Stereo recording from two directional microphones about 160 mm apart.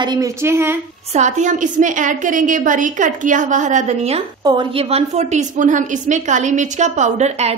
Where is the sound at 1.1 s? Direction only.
50° right (ahead or behind).